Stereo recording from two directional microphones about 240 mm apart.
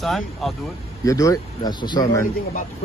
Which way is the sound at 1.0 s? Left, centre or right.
Centre.